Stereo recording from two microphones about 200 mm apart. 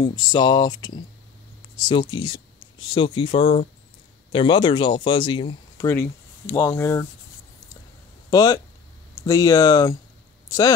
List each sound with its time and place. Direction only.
0.0 s speech: 20° left (ahead or behind)
5.9 s speech: 15° left (ahead or behind)
8.3 s speech: 20° left (ahead or behind)